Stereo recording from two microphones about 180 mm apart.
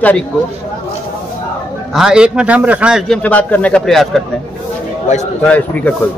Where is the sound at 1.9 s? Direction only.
5° right (ahead or behind).